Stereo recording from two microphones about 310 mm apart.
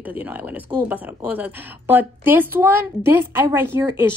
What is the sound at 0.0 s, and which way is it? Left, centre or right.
Speech, centre.